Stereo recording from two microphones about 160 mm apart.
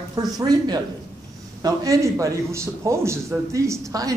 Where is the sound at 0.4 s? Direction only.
25° right (ahead or behind).